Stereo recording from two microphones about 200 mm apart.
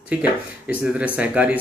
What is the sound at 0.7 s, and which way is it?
Speech, 10° right (ahead or behind).